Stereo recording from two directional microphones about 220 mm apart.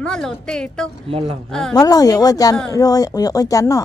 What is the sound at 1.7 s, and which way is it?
Speech, 15° left (ahead or behind).